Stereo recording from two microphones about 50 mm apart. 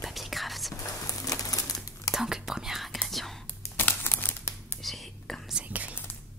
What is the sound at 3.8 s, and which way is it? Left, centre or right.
Crumpling, left.